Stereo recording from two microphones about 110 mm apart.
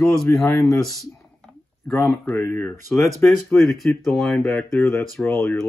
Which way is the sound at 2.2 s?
20° left (ahead or behind).